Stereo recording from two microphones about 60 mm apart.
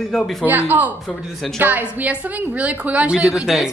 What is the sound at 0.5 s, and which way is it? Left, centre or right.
A woman's voice, right.